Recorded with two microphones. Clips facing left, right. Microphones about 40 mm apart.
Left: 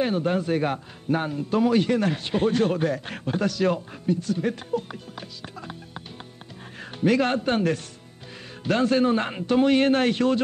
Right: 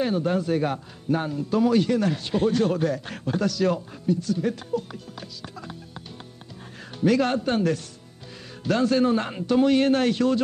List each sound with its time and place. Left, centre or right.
0.0 s a man's voice: left